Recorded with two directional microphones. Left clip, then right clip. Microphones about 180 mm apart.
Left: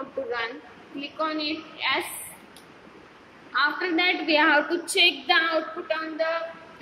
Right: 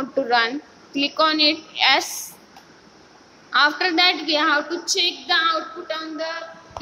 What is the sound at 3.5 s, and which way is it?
Speech, 60° right (ahead or behind).